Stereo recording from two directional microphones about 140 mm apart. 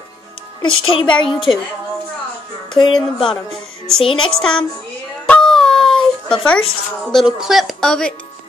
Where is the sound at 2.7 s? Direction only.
35° left (ahead or behind).